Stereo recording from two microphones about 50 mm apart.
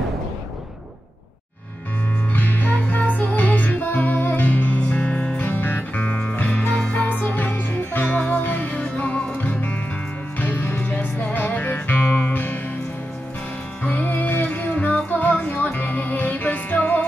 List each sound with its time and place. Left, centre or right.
2.3 s music: left
5.4 s music: left
6.0 s music: left
6.3 s music: left
9.4 s music: left
13.8 s music: left